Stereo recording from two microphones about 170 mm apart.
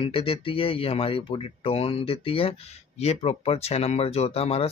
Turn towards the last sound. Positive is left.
turn(degrees=35)  # may be behind; listen again after turning